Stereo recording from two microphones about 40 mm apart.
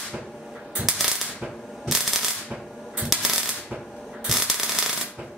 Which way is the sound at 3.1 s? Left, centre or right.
Centre.